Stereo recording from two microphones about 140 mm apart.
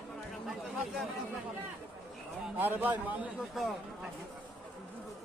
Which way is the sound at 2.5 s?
15° right (ahead or behind).